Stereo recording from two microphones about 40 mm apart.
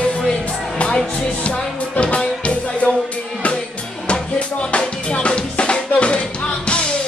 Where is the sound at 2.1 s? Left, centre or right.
Left.